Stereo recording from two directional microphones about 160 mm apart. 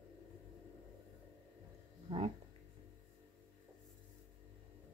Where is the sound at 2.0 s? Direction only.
35° right (ahead or behind).